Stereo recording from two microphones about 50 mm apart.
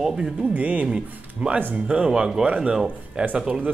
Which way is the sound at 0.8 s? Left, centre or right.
Centre.